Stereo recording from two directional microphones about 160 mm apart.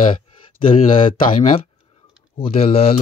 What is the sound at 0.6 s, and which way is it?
Speech, 30° left (ahead or behind).